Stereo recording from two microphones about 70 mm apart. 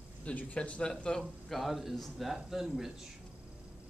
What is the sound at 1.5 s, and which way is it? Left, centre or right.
A man's voice, centre.